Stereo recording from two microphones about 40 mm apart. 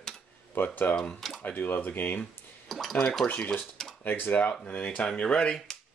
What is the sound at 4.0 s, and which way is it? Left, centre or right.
Speech, left.